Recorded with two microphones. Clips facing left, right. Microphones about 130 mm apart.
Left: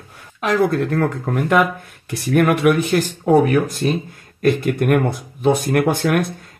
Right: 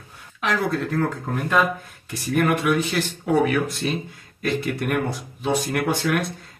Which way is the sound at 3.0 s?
40° left (ahead or behind).